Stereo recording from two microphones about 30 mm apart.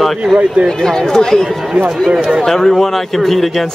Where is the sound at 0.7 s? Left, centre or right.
Centre.